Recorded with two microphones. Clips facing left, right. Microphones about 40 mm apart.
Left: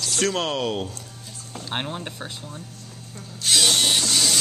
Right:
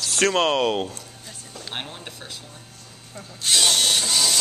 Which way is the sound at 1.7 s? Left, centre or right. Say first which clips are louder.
Left 5 dB; centre.